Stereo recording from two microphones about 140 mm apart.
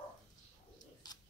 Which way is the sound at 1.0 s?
30° left (ahead or behind).